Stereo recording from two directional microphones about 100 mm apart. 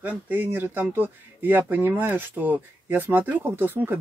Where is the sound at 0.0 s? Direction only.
15° right (ahead or behind).